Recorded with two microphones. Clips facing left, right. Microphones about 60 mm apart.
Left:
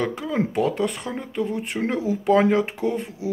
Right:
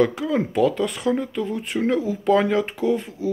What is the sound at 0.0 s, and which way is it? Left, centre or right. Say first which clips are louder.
Speech: right 4 dB; centre.